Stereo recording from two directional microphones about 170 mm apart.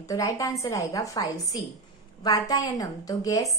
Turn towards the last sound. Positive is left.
turn(degrees=20)  # may be behind; listen again after turning